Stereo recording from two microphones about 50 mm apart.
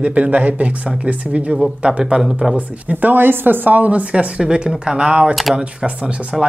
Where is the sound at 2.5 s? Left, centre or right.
Right.